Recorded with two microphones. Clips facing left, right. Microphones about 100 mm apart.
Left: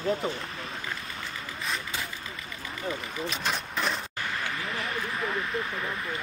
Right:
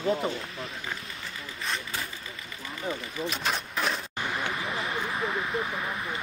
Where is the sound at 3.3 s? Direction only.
Centre (ahead or behind).